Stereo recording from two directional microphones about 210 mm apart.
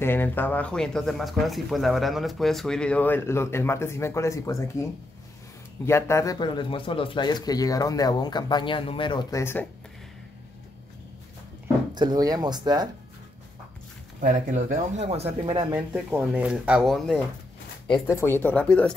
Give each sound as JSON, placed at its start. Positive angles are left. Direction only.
{"t": 0.0, "sound": "speech", "side_deg": 10}
{"t": 5.9, "sound": "speech", "side_deg": 10}
{"t": 11.9, "sound": "speech", "side_deg": -20}
{"t": 14.2, "sound": "speech", "side_deg": -35}
{"t": 15.4, "sound": "speech", "side_deg": -20}
{"t": 15.9, "sound": "speech", "side_deg": -5}
{"t": 18.0, "sound": "speech", "side_deg": 10}